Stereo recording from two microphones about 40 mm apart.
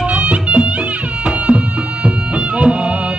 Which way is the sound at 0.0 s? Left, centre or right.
Right.